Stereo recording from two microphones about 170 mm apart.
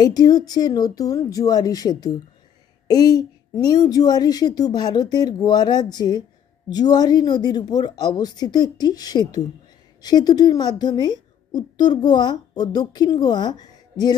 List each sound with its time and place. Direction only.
0.0 s a woman's voice: 20° left (ahead or behind)